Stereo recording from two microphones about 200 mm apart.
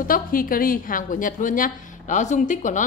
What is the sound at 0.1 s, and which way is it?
A woman's voice, 45° left (ahead or behind).